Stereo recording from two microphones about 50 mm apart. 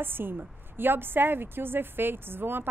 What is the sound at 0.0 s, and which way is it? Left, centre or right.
A woman's voice, right.